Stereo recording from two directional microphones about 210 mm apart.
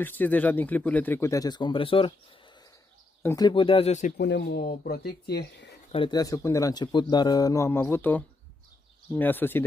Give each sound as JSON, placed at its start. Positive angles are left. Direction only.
{"t": 0.0, "sound": "speech", "side_deg": 10}
{"t": 3.2, "sound": "speech", "side_deg": 15}
{"t": 4.2, "sound": "speech", "side_deg": 55}
{"t": 5.9, "sound": "speech", "side_deg": 25}